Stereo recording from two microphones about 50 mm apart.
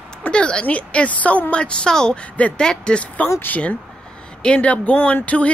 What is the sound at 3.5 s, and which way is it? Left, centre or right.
Speech, left.